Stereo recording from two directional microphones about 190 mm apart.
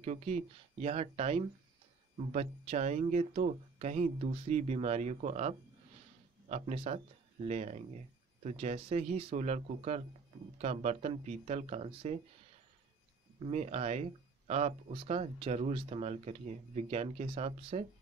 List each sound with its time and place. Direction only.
0.0 s speech: 35° right (ahead or behind)
13.5 s speech: 35° right (ahead or behind)